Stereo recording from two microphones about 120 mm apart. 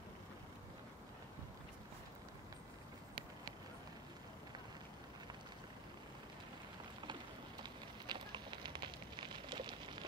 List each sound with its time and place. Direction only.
8.1 s fire: 40° right (ahead or behind)